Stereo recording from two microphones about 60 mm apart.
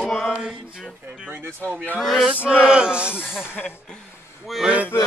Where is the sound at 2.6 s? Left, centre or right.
Centre.